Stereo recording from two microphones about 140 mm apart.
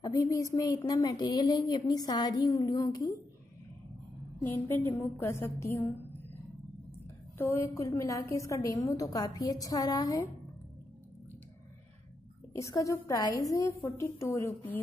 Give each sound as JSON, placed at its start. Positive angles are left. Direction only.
{"t": 0.0, "sound": "a woman's voice", "side_deg": 25}
{"t": 4.4, "sound": "a woman's voice", "side_deg": 10}
{"t": 7.3, "sound": "a woman's voice", "side_deg": 20}
{"t": 12.5, "sound": "a woman's voice", "side_deg": 20}